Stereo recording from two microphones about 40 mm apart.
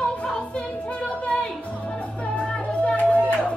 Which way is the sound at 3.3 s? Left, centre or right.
Left.